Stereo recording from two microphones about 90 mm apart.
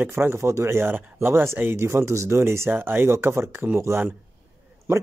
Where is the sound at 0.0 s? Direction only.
25° right (ahead or behind).